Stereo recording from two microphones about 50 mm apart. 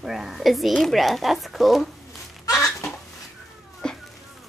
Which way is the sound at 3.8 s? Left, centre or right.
Centre.